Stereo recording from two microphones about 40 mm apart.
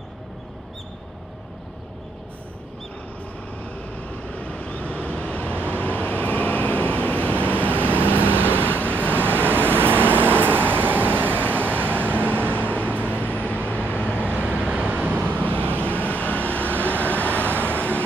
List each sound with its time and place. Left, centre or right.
4.3 s vehicle: left
8.1 s vehicle: right
8.6 s vehicle: left
9.2 s vehicle: right
13.3 s vehicle: left
14.4 s vehicle: right
15.8 s vehicle: left
16.6 s vehicle: right
17.0 s vehicle: left